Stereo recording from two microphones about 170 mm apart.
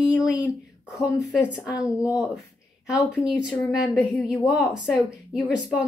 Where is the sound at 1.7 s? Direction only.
20° left (ahead or behind).